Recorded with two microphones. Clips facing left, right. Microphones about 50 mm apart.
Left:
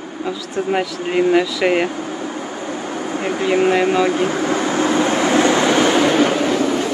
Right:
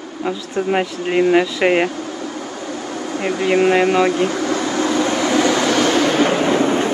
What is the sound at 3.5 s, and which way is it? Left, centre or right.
Speech, right.